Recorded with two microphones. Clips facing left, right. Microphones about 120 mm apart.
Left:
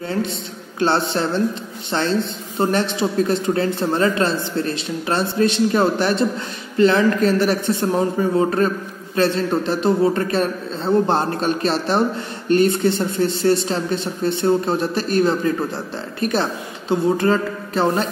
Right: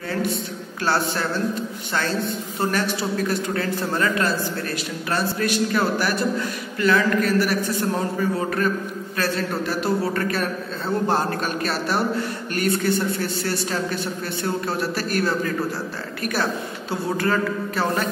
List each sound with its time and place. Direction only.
0.7 s a man's voice: 25° left (ahead or behind)